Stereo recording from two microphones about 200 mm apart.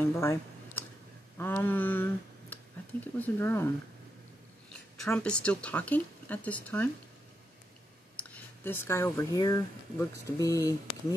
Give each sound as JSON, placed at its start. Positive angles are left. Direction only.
{"t": 0.0, "sound": "a sound", "side_deg": 10}
{"t": 1.4, "sound": "speech", "side_deg": 10}
{"t": 5.0, "sound": "speech", "side_deg": 5}
{"t": 8.2, "sound": "speech", "side_deg": 10}